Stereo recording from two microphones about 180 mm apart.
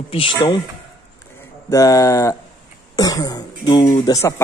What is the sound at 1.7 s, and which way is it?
Speech, 20° left (ahead or behind).